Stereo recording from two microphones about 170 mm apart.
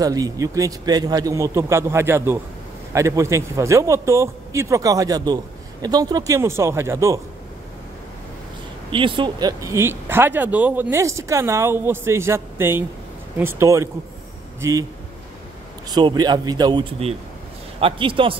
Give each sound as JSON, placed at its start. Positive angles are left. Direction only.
{"t": 0.0, "sound": "a man's voice", "side_deg": -20}
{"t": 8.9, "sound": "a man's voice", "side_deg": -30}
{"t": 15.9, "sound": "a man's voice", "side_deg": -25}